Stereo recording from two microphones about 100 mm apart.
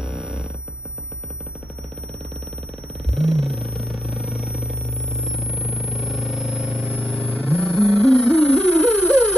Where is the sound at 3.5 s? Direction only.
65° right (ahead or behind).